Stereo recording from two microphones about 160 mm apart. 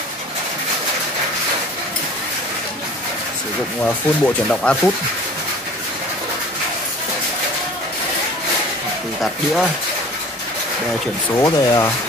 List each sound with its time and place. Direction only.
3.8 s speech: 5° left (ahead or behind)
9.2 s speech: centre (ahead or behind)
11.3 s speech: 20° left (ahead or behind)